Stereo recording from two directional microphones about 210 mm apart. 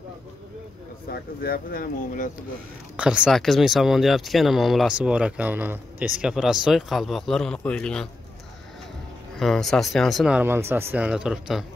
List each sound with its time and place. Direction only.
1.0 s speech: 45° left (ahead or behind)
3.0 s speech: 5° right (ahead or behind)
9.4 s speech: centre (ahead or behind)